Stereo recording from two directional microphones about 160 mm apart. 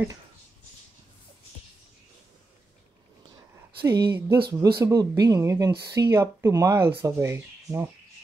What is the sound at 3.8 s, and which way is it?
Speech, 90° right.